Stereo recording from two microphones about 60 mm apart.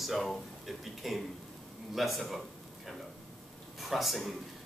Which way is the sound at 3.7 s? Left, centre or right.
Centre.